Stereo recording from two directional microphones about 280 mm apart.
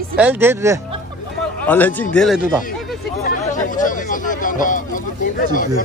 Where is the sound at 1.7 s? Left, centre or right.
Centre.